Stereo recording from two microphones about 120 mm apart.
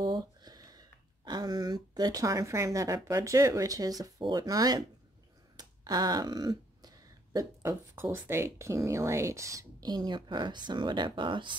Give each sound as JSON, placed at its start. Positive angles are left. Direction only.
{"t": 0.0, "sound": "speech", "side_deg": -35}
{"t": 5.6, "sound": "a sound", "side_deg": -35}
{"t": 7.3, "sound": "speech", "side_deg": -20}